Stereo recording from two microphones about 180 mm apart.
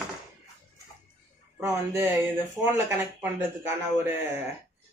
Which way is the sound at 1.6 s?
15° right (ahead or behind).